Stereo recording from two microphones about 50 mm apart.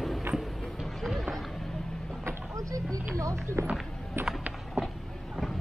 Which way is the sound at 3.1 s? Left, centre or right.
Right.